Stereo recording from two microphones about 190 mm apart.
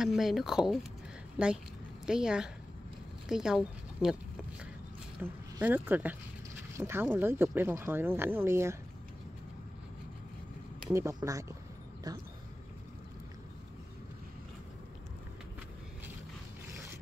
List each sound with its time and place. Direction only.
0.0 s speech: centre (ahead or behind)
5.2 s speech: 10° right (ahead or behind)
10.9 s speech: 15° right (ahead or behind)